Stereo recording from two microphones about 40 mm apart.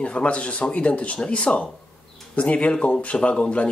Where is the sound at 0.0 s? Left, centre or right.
Left.